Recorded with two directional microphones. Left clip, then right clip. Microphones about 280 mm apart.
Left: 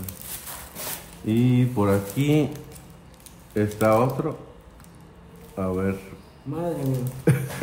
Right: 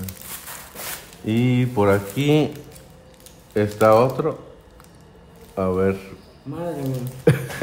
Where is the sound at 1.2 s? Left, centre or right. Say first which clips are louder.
Right 1 dB; right.